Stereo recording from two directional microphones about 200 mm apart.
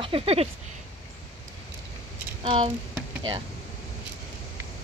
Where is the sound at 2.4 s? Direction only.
25° right (ahead or behind).